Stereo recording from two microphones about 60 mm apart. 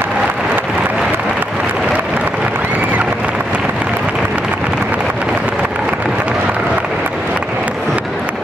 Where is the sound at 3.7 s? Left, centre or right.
Right.